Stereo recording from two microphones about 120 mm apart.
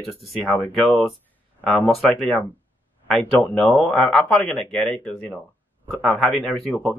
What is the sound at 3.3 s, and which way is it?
Speech, 15° left (ahead or behind).